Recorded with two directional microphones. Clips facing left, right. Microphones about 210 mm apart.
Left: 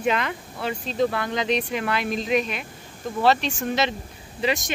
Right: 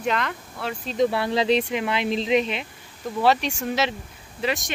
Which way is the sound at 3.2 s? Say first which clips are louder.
Even; 10° right (ahead or behind).